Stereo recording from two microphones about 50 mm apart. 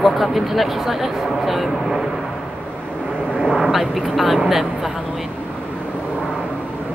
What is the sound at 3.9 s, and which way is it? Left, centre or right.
A woman's voice, centre.